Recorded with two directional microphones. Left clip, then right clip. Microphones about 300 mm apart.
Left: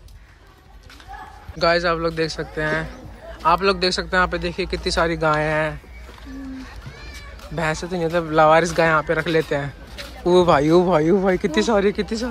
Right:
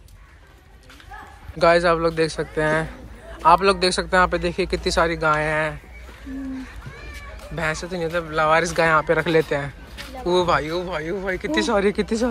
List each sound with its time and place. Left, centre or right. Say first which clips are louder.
1.6 s a man's voice: right 2 dB; centre
7.2 s speech: left 2 dB; centre